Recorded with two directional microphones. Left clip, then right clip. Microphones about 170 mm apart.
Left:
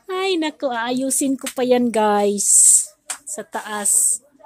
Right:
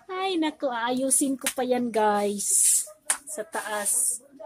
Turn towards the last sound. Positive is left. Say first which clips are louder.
# left 3 dB
turn(degrees=70)  # may be behind; listen again after turning